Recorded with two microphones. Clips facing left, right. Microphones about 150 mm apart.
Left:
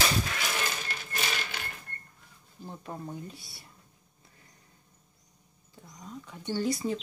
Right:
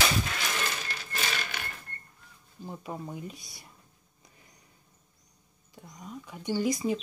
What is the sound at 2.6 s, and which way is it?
Speech, 10° right (ahead or behind).